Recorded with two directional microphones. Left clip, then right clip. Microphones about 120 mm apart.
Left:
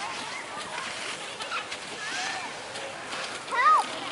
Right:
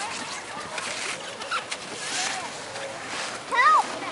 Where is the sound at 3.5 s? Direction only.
30° right (ahead or behind).